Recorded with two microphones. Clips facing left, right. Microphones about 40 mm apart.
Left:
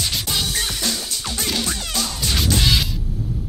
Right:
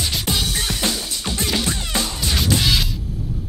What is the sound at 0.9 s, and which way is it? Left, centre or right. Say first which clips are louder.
Music: right 1 dB; centre.